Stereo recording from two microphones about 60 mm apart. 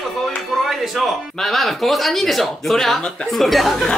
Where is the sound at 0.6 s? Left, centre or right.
Centre.